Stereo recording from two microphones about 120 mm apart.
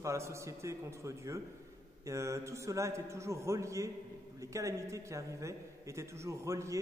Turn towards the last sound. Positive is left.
turn(degrees=-25)  # may be behind; listen again after turning